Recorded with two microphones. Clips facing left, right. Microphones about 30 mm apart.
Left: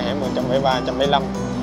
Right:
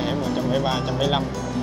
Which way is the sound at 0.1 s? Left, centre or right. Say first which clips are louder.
Left 4 dB; centre.